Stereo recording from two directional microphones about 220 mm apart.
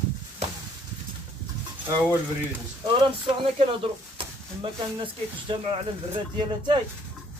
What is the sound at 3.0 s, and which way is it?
Speech, 25° right (ahead or behind).